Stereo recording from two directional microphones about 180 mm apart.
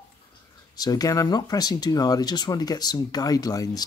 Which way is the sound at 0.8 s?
20° left (ahead or behind).